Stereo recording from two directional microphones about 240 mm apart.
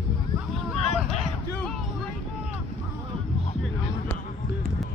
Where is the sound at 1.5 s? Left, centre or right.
Centre.